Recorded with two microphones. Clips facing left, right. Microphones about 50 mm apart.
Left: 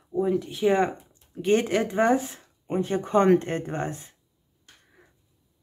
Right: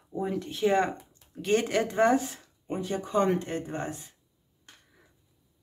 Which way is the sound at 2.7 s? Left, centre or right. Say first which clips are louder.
Left 5 dB; left.